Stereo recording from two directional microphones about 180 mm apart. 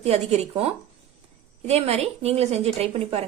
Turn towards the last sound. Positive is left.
turn(degrees=-35)  # may be behind; listen again after turning